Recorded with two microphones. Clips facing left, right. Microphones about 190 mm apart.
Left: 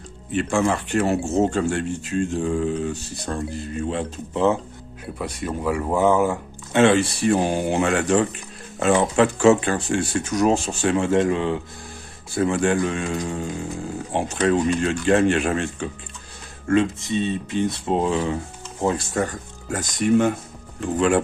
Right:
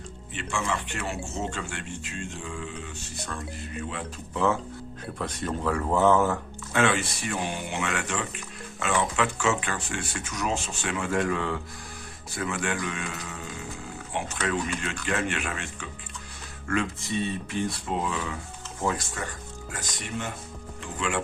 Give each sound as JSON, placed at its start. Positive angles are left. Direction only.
{"t": 0.3, "sound": "speech", "side_deg": 40}
{"t": 5.2, "sound": "speech", "side_deg": 10}
{"t": 6.7, "sound": "speech", "side_deg": 30}
{"t": 16.6, "sound": "speech", "side_deg": 25}
{"t": 19.1, "sound": "speech", "side_deg": 40}